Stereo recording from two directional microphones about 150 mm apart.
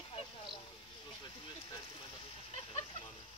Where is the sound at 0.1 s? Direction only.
35° left (ahead or behind).